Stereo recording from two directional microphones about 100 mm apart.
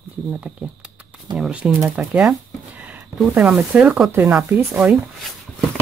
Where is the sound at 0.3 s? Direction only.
10° right (ahead or behind).